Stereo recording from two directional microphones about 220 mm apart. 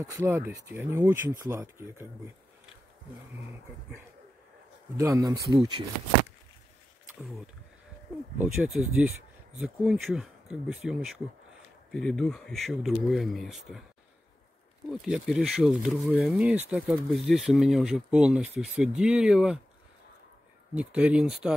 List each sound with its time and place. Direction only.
0.0 s speech: 10° right (ahead or behind)
4.9 s speech: 15° right (ahead or behind)
8.4 s speech: 5° right (ahead or behind)
14.9 s speech: centre (ahead or behind)
20.7 s speech: 5° right (ahead or behind)